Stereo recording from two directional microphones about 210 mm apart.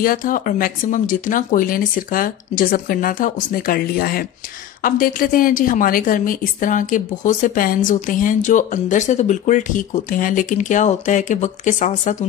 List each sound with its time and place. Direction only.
0.0 s speech: 40° left (ahead or behind)